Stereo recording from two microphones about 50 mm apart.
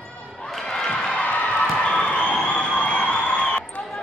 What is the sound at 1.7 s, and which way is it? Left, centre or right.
Cheering, left.